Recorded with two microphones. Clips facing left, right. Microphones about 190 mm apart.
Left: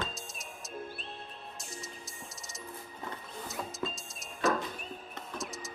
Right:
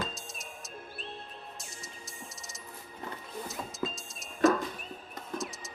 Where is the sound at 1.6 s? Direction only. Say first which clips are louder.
Left 2 dB; centre (ahead or behind).